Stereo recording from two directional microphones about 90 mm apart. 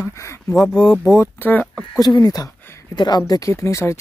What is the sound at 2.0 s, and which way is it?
Speech, 45° left (ahead or behind).